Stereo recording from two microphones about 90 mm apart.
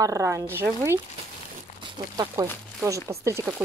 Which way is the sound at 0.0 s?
35° right (ahead or behind).